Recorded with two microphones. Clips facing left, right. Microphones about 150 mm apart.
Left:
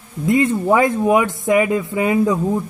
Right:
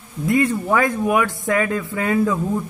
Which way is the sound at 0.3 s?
20° left (ahead or behind).